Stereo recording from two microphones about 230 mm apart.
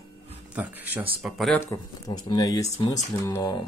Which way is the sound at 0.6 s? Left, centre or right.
Centre.